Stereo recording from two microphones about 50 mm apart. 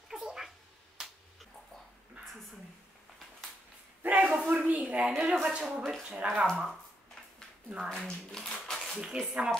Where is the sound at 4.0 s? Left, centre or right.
Right.